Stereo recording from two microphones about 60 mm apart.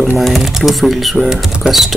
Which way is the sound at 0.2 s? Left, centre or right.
Centre.